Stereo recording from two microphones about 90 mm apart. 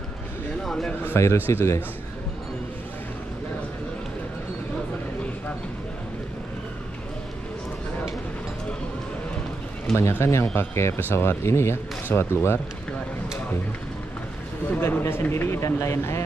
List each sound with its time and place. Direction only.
0.7 s speech: 5° left (ahead or behind)
1.0 s speech: 30° left (ahead or behind)
9.9 s speech: 30° left (ahead or behind)
14.7 s speech: 25° left (ahead or behind)